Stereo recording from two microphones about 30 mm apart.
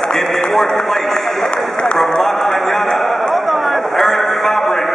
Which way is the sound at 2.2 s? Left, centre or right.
Centre.